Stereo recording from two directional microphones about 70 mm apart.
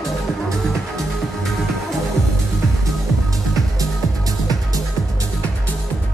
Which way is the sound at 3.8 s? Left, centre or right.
Right.